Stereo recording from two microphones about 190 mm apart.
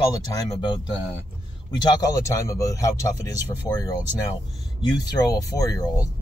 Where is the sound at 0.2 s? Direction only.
20° left (ahead or behind).